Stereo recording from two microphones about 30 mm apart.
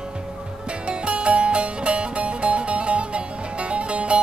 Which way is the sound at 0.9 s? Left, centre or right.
Right.